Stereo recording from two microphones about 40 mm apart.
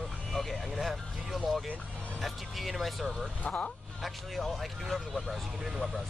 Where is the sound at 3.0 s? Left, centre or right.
Centre.